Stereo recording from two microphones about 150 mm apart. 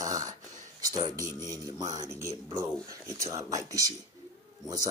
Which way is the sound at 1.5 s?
25° right (ahead or behind).